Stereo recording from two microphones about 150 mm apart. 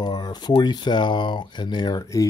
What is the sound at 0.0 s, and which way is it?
Speech, 30° left (ahead or behind).